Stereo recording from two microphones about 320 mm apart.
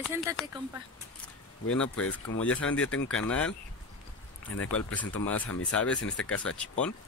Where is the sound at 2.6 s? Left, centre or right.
Left.